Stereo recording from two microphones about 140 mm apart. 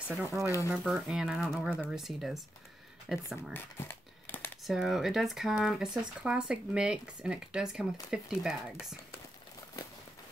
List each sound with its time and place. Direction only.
0.1 s speech: 5° right (ahead or behind)
3.5 s a sound: 15° left (ahead or behind)
4.6 s speech: centre (ahead or behind)